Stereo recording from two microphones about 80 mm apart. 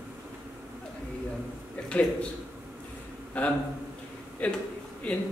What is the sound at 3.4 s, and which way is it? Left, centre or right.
A man's voice, centre.